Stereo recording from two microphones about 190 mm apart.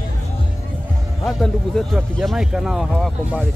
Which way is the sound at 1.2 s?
Centre (ahead or behind).